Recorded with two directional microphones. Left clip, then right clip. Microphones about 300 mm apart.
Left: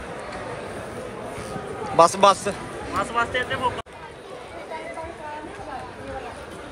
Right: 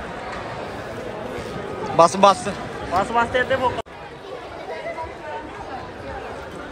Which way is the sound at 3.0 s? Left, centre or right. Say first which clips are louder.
Right 4 dB; centre.